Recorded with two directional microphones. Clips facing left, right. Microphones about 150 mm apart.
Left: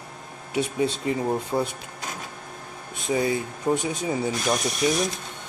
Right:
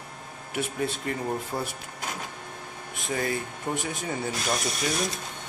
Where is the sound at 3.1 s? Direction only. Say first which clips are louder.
Left 5 dB; 15° left (ahead or behind).